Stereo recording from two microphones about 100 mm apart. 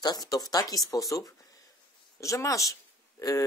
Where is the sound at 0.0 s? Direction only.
40° left (ahead or behind).